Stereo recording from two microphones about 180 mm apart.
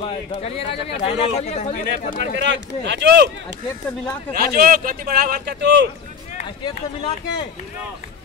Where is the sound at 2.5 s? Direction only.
90° right.